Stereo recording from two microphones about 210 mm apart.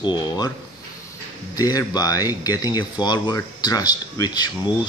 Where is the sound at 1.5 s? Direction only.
15° left (ahead or behind).